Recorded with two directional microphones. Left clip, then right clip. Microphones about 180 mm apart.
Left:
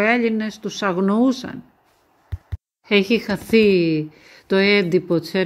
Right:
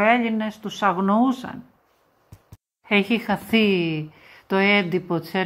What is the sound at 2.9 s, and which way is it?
Speech, 35° left (ahead or behind).